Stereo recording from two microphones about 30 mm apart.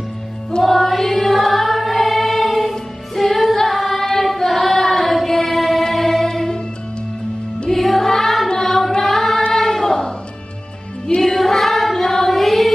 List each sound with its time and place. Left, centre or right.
0.7 s music: centre
1.4 s choir: centre
3.2 s a capella: centre
4.0 s choir: centre
7.7 s music: centre
8.6 s singing: centre
9.5 s choir: centre
11.3 s choir: centre